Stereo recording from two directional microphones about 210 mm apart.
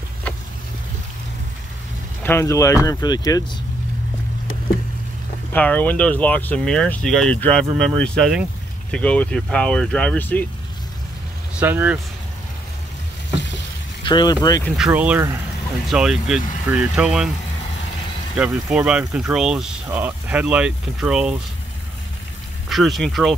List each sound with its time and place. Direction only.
2.2 s speech: 10° left (ahead or behind)
5.5 s speech: 10° left (ahead or behind)
11.5 s speech: 10° right (ahead or behind)
14.0 s speech: 20° left (ahead or behind)
14.8 s speech: 10° right (ahead or behind)
18.3 s speech: 5° right (ahead or behind)
22.7 s speech: centre (ahead or behind)